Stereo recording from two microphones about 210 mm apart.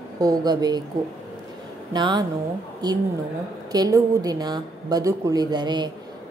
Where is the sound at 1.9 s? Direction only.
20° right (ahead or behind).